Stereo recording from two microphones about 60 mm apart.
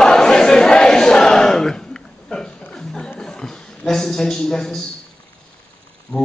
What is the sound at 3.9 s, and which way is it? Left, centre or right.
Speech, centre.